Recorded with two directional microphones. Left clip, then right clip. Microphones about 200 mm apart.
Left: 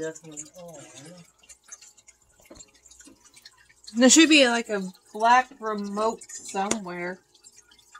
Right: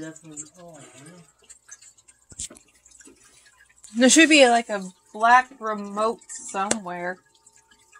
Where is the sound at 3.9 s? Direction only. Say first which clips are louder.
Right 2 dB; 5° right (ahead or behind).